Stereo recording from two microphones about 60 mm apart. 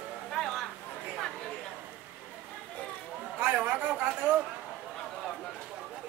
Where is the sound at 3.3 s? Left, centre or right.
Right.